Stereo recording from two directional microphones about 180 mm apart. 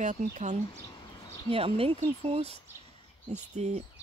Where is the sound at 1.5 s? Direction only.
30° right (ahead or behind).